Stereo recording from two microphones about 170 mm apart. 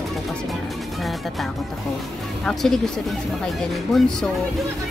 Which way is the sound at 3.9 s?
Centre (ahead or behind).